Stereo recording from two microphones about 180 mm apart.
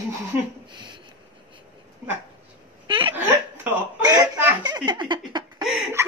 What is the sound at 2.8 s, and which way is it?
Hiccup, 25° right (ahead or behind).